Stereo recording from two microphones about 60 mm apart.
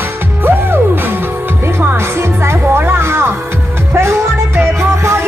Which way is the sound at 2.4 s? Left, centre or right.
Right.